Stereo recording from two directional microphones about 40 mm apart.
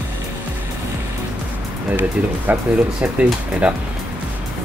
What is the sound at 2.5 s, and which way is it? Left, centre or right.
Speech, right.